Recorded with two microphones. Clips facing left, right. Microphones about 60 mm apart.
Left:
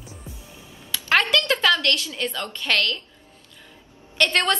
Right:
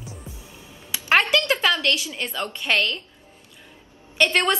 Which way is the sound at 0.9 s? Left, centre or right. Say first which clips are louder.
Right 1 dB; right.